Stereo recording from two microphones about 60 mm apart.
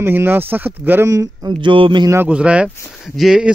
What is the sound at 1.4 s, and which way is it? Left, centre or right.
Speech, right.